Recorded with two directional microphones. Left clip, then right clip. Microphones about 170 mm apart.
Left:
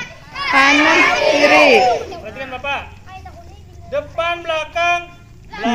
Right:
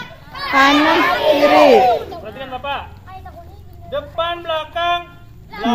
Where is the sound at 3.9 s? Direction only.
20° left (ahead or behind).